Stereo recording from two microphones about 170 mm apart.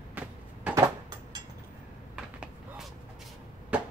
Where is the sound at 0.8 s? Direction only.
25° right (ahead or behind).